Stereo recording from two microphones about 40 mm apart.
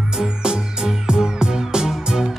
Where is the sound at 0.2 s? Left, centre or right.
Centre.